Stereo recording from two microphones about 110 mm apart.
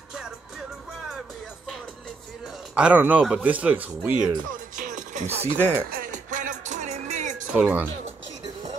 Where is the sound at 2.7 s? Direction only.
10° right (ahead or behind).